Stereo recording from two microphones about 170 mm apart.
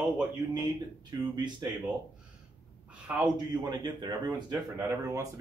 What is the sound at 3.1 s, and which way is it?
Speech, 10° right (ahead or behind).